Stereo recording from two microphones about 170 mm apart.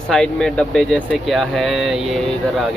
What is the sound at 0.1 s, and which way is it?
Speech, 5° left (ahead or behind).